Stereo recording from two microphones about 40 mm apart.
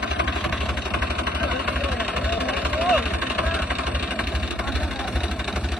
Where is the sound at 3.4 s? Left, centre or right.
Centre.